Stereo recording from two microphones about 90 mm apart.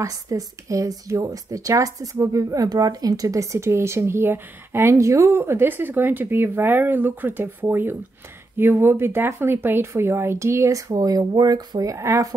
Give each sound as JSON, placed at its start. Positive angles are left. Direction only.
{"t": 0.0, "sound": "speech", "side_deg": -40}